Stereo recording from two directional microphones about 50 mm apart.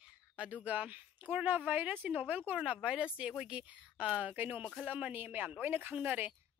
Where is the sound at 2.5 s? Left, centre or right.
Right.